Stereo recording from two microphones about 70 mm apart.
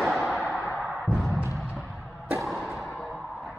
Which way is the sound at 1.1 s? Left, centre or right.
Centre.